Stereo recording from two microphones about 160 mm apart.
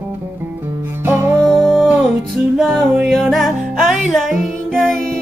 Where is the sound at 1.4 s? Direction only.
Centre (ahead or behind).